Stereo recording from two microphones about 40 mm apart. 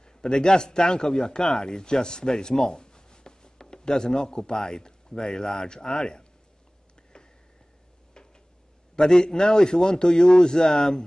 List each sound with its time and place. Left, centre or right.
0.0 s speech: centre
8.9 s a man's voice: centre